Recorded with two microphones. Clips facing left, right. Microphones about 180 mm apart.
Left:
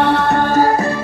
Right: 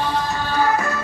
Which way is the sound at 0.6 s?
35° left (ahead or behind).